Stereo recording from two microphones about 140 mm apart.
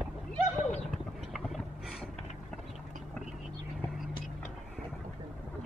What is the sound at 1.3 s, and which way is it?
Boat, centre (ahead or behind).